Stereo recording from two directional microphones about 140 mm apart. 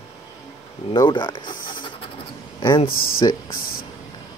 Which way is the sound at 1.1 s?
35° left (ahead or behind).